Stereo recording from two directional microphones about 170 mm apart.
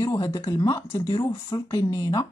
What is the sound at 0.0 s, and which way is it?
Speech, 20° left (ahead or behind).